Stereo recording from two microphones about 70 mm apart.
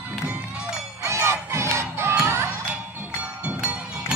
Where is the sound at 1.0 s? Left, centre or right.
Right.